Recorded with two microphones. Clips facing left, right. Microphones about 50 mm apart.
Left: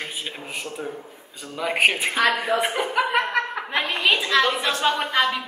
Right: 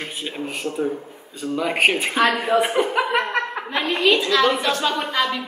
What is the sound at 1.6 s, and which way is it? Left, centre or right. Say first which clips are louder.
A man's voice: right 1 dB; centre.